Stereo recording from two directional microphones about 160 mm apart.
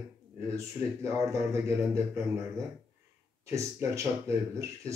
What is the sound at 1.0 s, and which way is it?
A man's voice, 20° right (ahead or behind).